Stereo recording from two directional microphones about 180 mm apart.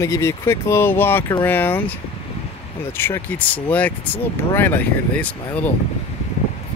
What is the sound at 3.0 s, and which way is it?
Speech, 10° left (ahead or behind).